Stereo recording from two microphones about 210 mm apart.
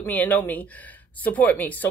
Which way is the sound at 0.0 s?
10° left (ahead or behind).